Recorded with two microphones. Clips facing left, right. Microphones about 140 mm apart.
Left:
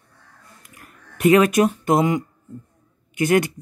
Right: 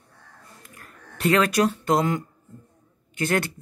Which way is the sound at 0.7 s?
15° left (ahead or behind).